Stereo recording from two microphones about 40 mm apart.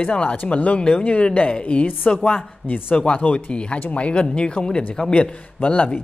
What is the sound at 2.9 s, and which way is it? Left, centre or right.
A woman's voice, left.